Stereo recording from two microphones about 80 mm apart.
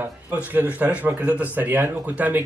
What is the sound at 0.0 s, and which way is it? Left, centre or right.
Speech, right.